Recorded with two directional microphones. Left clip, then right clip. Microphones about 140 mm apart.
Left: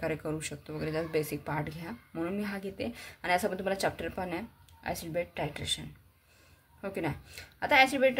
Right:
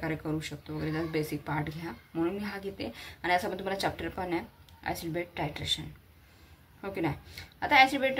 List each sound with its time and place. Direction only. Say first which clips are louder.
0.0 s speech: even; 35° left (ahead or behind)